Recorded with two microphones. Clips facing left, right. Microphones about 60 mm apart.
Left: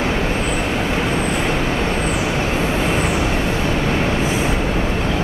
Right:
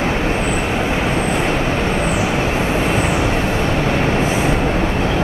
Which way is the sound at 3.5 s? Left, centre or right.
Right.